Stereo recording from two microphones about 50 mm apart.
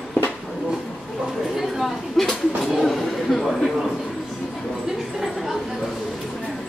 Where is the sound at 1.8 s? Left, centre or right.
Centre.